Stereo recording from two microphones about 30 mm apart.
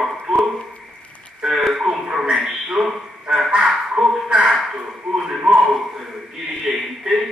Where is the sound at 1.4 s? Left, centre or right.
Centre.